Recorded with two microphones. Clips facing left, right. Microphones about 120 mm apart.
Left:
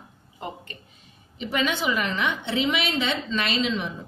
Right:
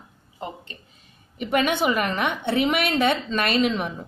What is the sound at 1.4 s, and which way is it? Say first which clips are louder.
A woman's voice: right 4 dB; 55° right (ahead or behind).